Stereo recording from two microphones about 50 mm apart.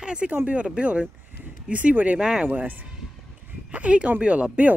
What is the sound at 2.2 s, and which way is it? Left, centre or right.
Speech, centre.